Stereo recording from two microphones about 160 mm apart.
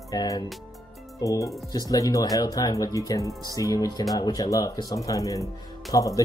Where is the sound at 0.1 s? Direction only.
25° left (ahead or behind).